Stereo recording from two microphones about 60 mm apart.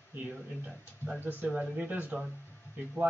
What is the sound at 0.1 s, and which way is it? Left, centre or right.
Speech, right.